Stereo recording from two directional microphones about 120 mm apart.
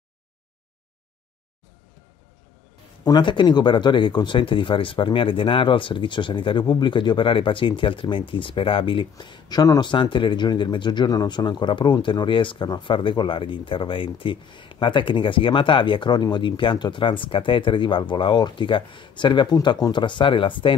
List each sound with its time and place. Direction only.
3.0 s speech: 40° left (ahead or behind)